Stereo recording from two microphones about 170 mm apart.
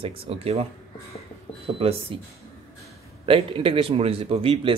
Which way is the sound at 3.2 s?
30° right (ahead or behind).